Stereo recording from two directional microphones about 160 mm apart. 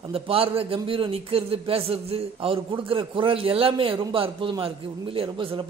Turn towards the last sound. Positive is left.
turn(degrees=-35)  # may be behind; listen again after turning